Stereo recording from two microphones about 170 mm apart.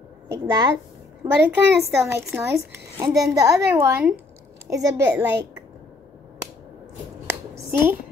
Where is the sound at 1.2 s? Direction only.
20° right (ahead or behind).